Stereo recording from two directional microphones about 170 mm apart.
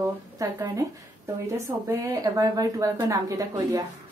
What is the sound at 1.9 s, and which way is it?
Speech, 20° right (ahead or behind).